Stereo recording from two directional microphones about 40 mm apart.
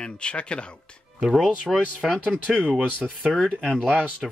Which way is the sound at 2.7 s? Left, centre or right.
Centre.